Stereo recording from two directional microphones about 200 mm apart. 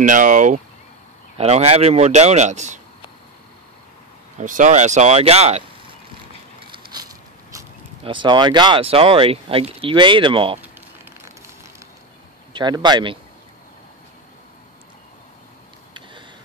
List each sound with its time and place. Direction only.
0.0 s a man's voice: 40° right (ahead or behind)
4.4 s a man's voice: 40° right (ahead or behind)
6.7 s speech: 20° right (ahead or behind)
12.5 s speech: 20° right (ahead or behind)